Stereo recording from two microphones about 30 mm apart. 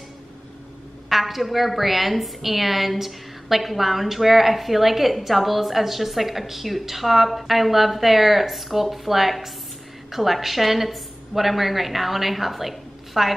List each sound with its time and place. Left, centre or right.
1.0 s a woman's voice: centre